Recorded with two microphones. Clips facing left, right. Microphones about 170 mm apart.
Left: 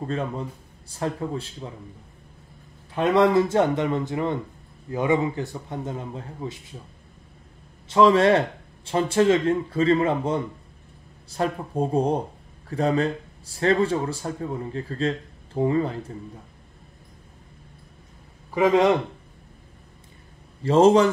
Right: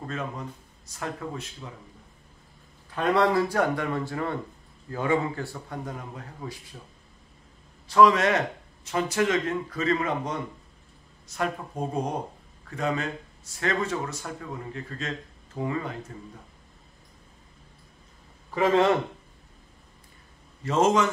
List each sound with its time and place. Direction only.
0.0 s speech: 30° left (ahead or behind)
2.9 s speech: 20° left (ahead or behind)
7.9 s speech: 30° left (ahead or behind)
18.5 s a man's voice: 15° left (ahead or behind)
20.6 s speech: 30° left (ahead or behind)